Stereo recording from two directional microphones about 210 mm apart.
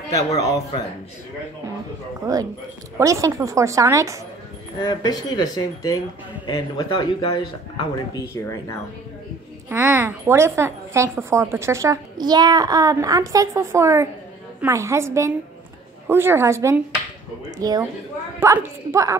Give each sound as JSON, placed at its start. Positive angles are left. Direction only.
{"t": 0.1, "sound": "a woman's voice", "side_deg": 15}
{"t": 2.3, "sound": "a woman's voice", "side_deg": -15}
{"t": 4.8, "sound": "a woman's voice", "side_deg": 20}
{"t": 9.7, "sound": "a woman's voice", "side_deg": -10}